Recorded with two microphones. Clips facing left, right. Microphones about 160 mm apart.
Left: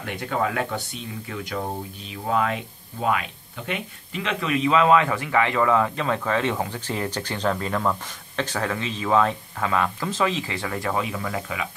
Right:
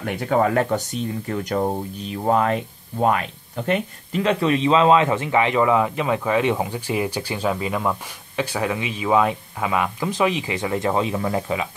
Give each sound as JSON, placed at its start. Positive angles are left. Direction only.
{"t": 0.0, "sound": "speech", "side_deg": -45}